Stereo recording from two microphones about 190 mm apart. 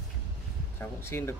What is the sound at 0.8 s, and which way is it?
Speech, 15° left (ahead or behind).